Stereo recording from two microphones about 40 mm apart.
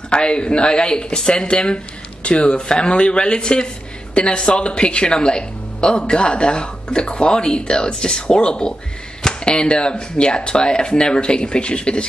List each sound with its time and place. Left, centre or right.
0.1 s speech: left